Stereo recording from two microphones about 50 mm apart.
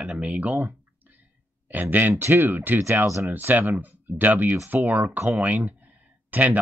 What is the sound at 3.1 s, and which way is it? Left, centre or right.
Speech, right.